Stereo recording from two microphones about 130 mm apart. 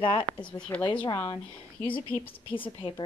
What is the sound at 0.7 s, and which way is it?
Speech, 15° left (ahead or behind).